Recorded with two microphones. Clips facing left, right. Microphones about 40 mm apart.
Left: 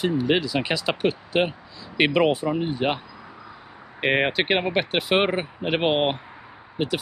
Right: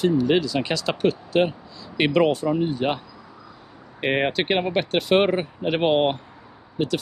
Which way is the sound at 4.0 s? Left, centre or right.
Centre.